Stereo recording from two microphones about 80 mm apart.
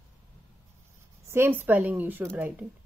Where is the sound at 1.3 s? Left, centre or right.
Right.